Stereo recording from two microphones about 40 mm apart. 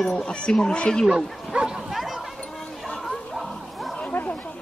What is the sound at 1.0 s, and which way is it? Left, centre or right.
Speech, centre.